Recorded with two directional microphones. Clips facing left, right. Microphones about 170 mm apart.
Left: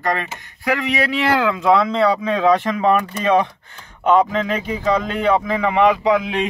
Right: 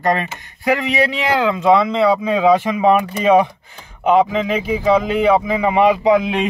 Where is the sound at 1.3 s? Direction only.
Centre (ahead or behind).